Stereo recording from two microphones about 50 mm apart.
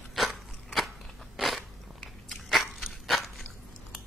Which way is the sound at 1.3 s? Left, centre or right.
Centre.